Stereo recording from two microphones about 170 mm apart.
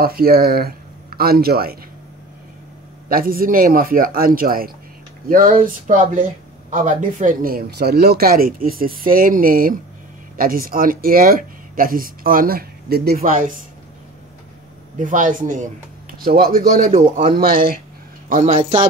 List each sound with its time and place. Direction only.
0.0 s speech: 60° right (ahead or behind)
3.1 s speech: 60° right (ahead or behind)
15.0 s a man's voice: 50° right (ahead or behind)
16.3 s speech: 60° right (ahead or behind)
18.3 s a man's voice: 45° right (ahead or behind)